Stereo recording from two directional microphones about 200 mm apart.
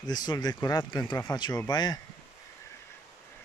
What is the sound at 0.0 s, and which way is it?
Speech, 20° left (ahead or behind).